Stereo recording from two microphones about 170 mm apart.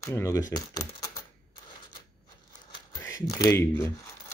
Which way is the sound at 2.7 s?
20° left (ahead or behind).